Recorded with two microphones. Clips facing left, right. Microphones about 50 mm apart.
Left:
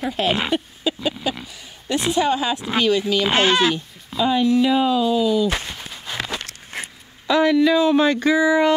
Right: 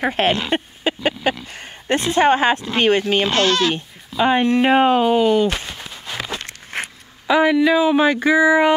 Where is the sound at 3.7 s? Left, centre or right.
Right.